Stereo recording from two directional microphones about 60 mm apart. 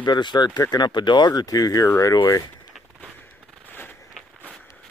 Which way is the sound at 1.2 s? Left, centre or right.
Left.